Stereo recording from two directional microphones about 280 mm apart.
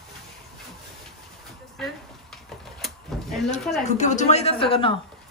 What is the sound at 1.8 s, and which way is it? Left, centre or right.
Speech, centre.